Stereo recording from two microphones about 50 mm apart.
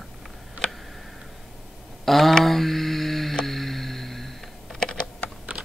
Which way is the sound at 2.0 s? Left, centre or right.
Centre.